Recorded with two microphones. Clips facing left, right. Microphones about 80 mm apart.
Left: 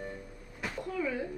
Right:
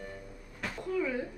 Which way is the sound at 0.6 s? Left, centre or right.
Centre.